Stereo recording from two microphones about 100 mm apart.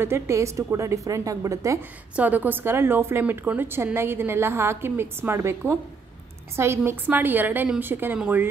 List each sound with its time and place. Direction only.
0.0 s a woman's voice: 25° right (ahead or behind)
1.8 s a woman's voice: 15° right (ahead or behind)